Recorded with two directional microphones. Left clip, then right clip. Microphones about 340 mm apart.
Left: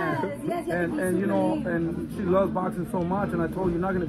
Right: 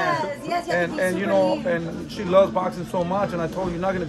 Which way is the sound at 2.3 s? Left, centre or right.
Right.